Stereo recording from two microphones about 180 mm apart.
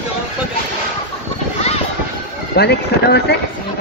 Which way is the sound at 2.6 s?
65° left (ahead or behind).